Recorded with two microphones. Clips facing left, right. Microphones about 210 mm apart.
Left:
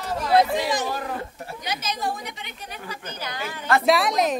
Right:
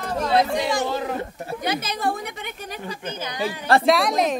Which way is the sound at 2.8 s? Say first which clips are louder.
Right 3 dB; 25° right (ahead or behind).